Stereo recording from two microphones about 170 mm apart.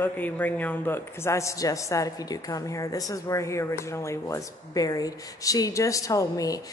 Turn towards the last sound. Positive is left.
turn(degrees=20)  # may be behind; listen again after turning